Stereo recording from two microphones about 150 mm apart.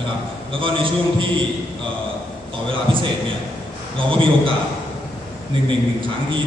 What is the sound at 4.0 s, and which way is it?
Speech, 35° right (ahead or behind).